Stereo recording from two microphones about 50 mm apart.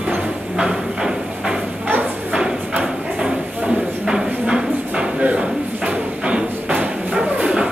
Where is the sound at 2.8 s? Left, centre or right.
Centre.